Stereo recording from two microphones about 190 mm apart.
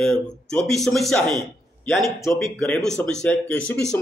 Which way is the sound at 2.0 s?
15° left (ahead or behind).